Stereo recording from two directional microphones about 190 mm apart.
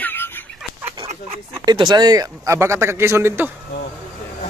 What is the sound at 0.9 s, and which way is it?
Speech, 25° right (ahead or behind).